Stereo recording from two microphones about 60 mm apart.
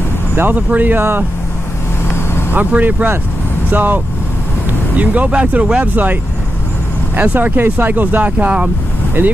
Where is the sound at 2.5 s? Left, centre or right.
Right.